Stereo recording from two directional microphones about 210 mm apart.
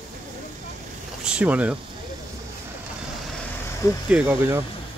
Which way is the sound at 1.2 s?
5° right (ahead or behind).